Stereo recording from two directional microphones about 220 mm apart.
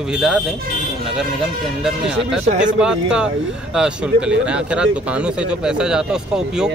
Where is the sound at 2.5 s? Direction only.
35° right (ahead or behind).